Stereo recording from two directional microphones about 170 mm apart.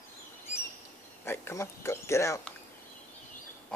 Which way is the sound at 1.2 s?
15° left (ahead or behind).